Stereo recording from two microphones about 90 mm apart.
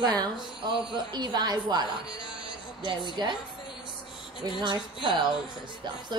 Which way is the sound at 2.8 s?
60° right (ahead or behind).